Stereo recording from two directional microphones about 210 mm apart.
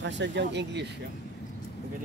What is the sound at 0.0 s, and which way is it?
Speech, 55° right (ahead or behind).